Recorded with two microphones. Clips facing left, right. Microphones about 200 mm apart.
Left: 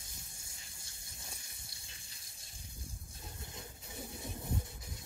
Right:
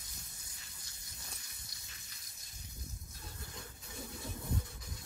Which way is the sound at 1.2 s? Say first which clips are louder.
Left 2 dB; 25° left (ahead or behind).